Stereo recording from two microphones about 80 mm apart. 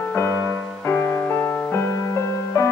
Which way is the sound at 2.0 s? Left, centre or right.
Left.